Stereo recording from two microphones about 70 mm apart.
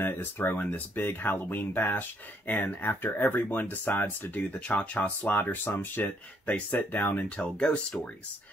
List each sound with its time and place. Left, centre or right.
0.0 s speech: left; by 8.1 s centre